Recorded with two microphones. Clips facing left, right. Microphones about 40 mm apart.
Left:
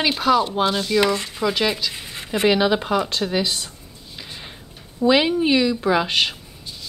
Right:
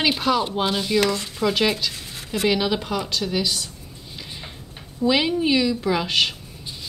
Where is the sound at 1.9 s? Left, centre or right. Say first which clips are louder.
Left 3 dB; left.